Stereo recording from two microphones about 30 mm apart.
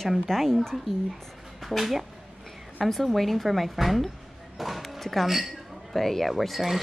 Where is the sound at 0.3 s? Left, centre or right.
Centre.